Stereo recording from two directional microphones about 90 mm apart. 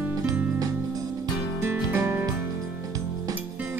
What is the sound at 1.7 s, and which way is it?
Music, 25° right (ahead or behind).